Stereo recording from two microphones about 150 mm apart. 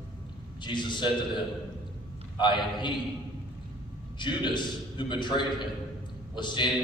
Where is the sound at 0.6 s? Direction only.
30° left (ahead or behind).